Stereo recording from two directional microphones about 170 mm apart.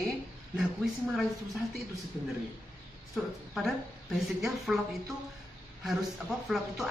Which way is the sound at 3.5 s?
Centre (ahead or behind).